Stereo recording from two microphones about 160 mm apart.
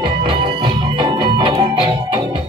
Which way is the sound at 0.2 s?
30° right (ahead or behind).